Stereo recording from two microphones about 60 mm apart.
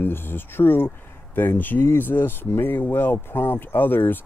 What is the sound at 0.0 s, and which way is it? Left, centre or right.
Speech, left.